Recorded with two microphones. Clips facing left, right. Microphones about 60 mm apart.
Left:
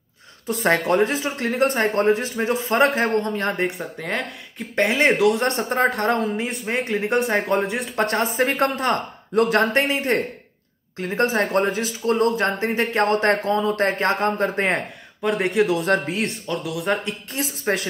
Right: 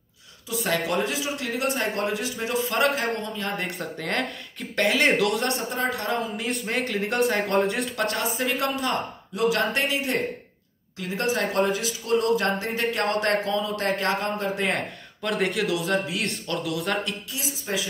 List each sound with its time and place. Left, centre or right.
0.5 s speech: left
3.5 s speech: left
4.0 s speech: centre
4.7 s speech: left
5.4 s speech: left
6.4 s speech: centre
8.0 s speech: left
9.6 s speech: left
15.2 s speech: left
15.8 s speech: left
16.3 s speech: centre
17.3 s speech: left